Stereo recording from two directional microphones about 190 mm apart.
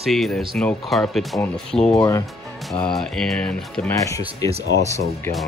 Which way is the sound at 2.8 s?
Centre (ahead or behind).